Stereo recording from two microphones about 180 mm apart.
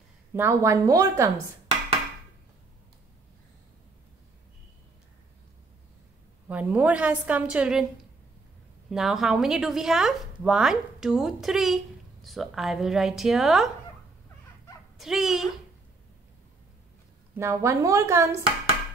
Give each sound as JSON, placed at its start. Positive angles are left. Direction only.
{"t": 0.3, "sound": "a woman's voice", "side_deg": -15}
{"t": 6.4, "sound": "a woman's voice", "side_deg": -10}
{"t": 8.9, "sound": "speech", "side_deg": 0}
{"t": 15.0, "sound": "speech", "side_deg": 0}
{"t": 17.4, "sound": "a woman's voice", "side_deg": -15}